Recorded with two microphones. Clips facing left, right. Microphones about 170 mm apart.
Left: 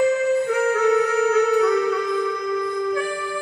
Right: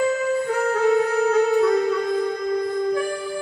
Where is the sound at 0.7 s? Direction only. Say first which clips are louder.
Right 2 dB; 30° right (ahead or behind).